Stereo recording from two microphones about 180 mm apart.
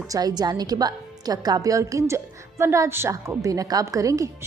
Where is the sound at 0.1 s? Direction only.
20° right (ahead or behind).